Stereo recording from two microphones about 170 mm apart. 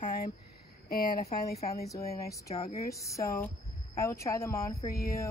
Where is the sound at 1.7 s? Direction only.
20° left (ahead or behind).